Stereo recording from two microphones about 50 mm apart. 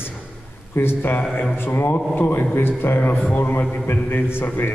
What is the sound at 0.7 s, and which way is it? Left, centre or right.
A man's voice, left.